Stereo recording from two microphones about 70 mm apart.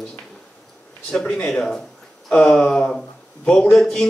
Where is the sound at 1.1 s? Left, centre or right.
Centre.